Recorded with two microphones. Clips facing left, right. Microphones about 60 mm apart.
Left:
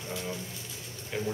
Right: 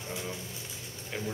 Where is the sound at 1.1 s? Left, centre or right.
Centre.